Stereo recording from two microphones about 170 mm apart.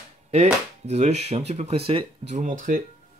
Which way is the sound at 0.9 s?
40° right (ahead or behind).